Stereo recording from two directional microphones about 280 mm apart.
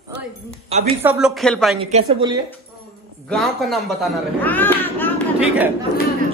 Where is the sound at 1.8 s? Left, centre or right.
Right.